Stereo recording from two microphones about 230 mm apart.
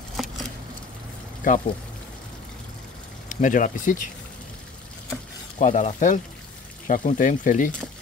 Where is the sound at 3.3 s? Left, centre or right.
Left.